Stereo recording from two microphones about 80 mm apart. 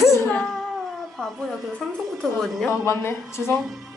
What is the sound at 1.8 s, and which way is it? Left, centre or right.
Speech, centre.